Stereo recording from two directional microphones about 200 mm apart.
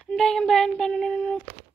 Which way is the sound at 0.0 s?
Centre (ahead or behind).